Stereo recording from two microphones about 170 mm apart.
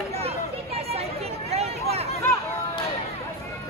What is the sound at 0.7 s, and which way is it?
Chatter, 35° right (ahead or behind).